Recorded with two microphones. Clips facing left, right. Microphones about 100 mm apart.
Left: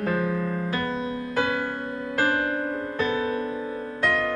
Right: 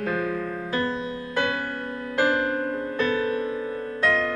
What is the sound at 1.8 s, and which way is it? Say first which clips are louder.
Music: right 1 dB; 15° left (ahead or behind).